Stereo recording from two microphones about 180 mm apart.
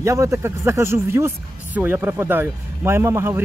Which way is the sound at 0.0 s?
15° right (ahead or behind).